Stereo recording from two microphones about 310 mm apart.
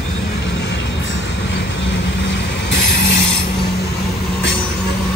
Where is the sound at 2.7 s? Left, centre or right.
Left.